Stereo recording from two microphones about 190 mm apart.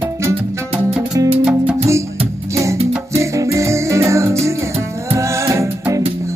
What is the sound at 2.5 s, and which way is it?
Music, 15° right (ahead or behind).